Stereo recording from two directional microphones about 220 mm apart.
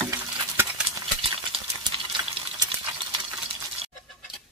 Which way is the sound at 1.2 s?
20° right (ahead or behind).